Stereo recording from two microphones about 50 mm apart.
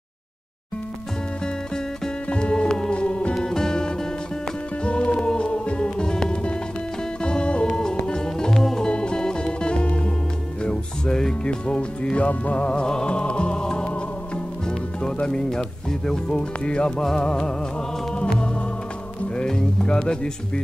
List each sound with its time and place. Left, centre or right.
2.2 s music: left
3.3 s music: centre
11.4 s music: left
17.0 s speech: centre
18.1 s music: centre
19.3 s speech: centre